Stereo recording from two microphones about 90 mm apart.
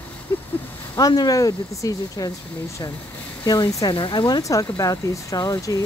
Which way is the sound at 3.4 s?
55° left (ahead or behind).